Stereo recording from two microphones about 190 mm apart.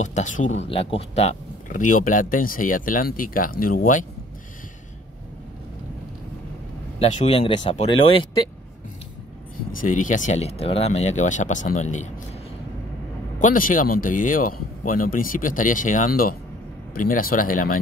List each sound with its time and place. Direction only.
0.0 s speech: 40° left (ahead or behind)
7.0 s speech: 30° left (ahead or behind)
9.7 s speech: 45° left (ahead or behind)
13.4 s speech: 45° left (ahead or behind)